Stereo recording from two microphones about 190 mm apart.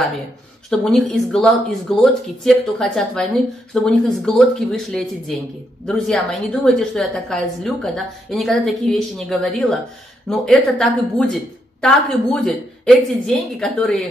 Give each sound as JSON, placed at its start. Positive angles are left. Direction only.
{"t": 0.7, "sound": "a woman's voice", "side_deg": 0}